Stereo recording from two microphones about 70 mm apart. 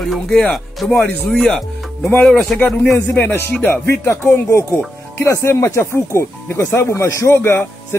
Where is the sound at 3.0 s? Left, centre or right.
Left.